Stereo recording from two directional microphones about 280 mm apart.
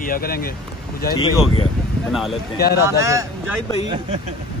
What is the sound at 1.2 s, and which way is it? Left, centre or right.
Speech, centre.